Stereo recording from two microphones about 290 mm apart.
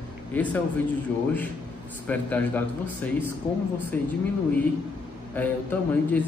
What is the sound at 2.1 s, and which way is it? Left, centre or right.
A man's voice, centre.